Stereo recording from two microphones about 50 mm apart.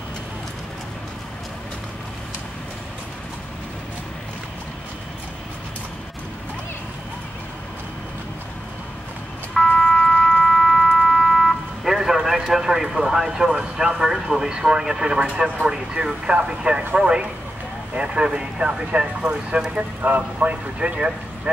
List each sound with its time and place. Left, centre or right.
9.5 s emergency vehicle: centre
10.4 s a sound: centre
15.6 s speech: centre